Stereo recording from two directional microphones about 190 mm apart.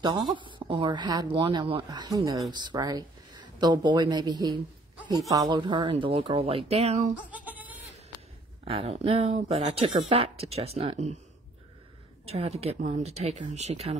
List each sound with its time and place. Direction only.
0.0 s speech: 25° right (ahead or behind)
7.2 s bleat: 10° right (ahead or behind)
8.6 s speech: 30° right (ahead or behind)
12.3 s speech: 30° right (ahead or behind)